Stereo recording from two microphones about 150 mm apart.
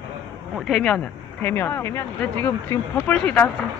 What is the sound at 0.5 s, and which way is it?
Speech, centre (ahead or behind).